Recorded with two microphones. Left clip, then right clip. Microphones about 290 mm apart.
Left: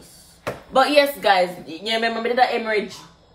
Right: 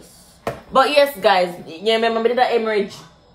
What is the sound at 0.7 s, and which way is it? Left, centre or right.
A woman's voice, centre.